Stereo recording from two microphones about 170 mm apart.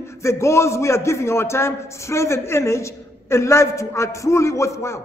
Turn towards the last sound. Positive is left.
turn(degrees=15)  # may be behind; listen again after turning